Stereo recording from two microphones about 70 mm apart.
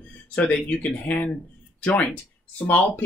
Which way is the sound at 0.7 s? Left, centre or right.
Left.